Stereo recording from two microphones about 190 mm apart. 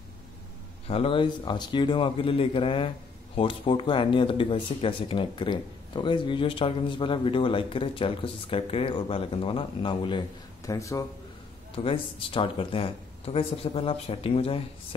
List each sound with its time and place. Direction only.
0.8 s speech: 30° left (ahead or behind)
11.7 s speech: 30° left (ahead or behind)